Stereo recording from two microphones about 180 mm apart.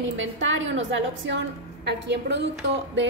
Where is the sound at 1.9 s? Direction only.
70° right (ahead or behind).